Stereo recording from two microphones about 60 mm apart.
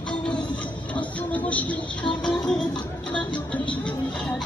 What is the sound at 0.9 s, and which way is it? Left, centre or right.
Music, left.